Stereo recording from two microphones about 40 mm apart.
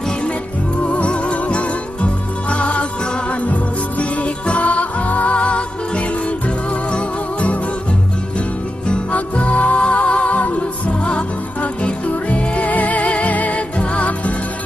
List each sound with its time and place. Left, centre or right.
0.9 s music: left
9.1 s music: left